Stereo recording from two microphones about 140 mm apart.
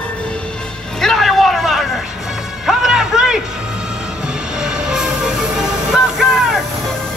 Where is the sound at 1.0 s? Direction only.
Centre (ahead or behind).